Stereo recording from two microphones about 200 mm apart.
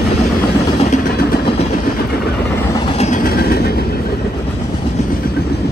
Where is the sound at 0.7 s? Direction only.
35° left (ahead or behind).